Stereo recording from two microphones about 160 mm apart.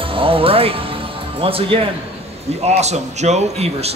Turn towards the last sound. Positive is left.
turn(degrees=-40)  # may be behind; listen again after turning